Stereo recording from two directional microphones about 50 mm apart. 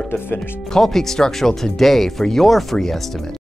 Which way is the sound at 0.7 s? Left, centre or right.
Centre.